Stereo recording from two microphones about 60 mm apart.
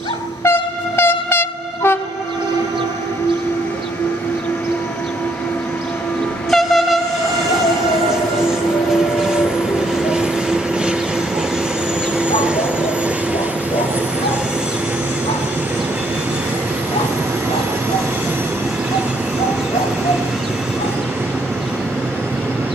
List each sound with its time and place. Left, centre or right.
0.4 s train: left
6.5 s train: centre
9.2 s train: centre
12.2 s vehicle: centre